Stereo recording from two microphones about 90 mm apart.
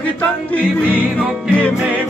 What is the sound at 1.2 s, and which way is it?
Music, 10° right (ahead or behind).